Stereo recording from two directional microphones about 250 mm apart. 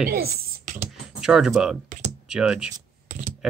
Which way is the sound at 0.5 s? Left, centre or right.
Right.